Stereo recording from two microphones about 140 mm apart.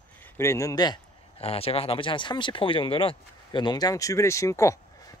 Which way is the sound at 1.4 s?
45° left (ahead or behind).